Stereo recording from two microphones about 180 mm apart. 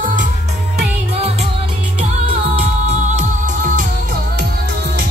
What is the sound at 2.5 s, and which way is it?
Music, 40° right (ahead or behind).